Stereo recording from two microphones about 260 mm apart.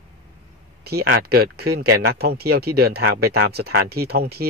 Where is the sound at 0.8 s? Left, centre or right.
Right.